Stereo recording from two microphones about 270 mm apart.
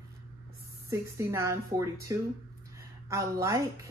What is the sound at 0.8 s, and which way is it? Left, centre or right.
A woman's voice, centre.